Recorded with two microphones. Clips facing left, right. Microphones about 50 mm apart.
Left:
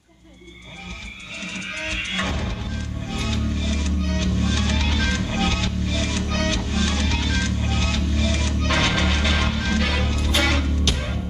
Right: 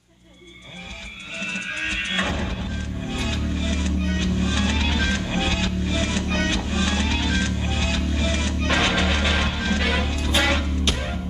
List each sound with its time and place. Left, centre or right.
1.8 s music: right